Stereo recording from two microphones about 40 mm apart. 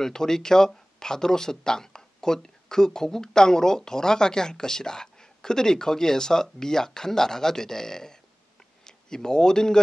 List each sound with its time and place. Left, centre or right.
0.0 s speech: centre